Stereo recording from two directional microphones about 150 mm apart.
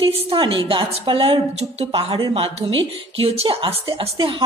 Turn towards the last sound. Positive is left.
turn(degrees=-35)  # may be behind; listen again after turning